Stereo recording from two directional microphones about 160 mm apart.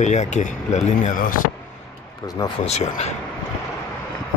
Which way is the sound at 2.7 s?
45° left (ahead or behind).